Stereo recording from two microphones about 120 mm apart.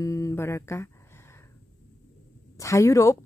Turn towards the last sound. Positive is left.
turn(degrees=25)  # may be behind; listen again after turning